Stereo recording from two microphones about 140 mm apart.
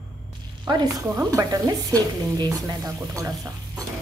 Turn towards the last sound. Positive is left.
turn(degrees=-25)  # may be behind; listen again after turning